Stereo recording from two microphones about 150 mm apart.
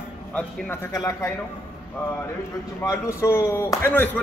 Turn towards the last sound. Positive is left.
turn(degrees=15)  # may be behind; listen again after turning